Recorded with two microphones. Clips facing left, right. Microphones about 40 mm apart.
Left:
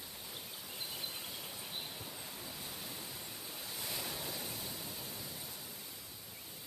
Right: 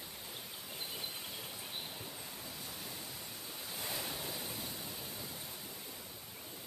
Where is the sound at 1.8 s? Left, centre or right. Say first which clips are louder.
Even; centre.